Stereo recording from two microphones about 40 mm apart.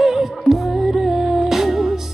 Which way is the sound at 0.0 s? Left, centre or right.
Centre.